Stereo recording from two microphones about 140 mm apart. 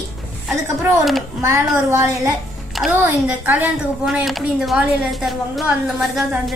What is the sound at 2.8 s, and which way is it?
Speech, centre (ahead or behind).